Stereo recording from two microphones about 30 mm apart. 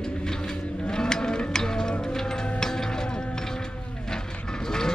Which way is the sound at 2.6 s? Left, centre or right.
Left.